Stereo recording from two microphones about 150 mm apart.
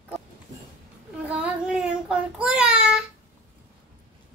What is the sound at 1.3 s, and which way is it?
Child singing, 5° right (ahead or behind).